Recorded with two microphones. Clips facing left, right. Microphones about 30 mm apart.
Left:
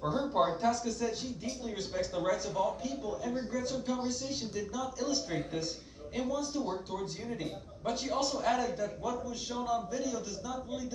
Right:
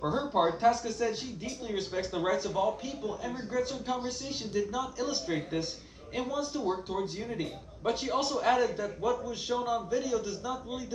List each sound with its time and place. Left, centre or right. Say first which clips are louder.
0.0 s a man's voice: right 2 dB; centre